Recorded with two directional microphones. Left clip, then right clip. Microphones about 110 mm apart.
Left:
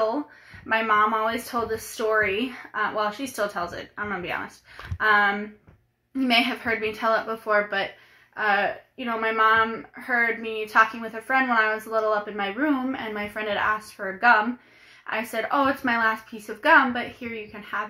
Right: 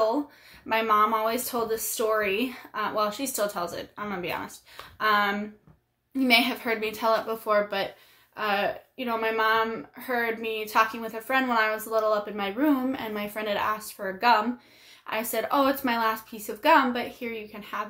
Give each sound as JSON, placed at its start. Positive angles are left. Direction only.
{"t": 0.7, "sound": "a woman's voice", "side_deg": -25}
{"t": 6.1, "sound": "a woman's voice", "side_deg": -15}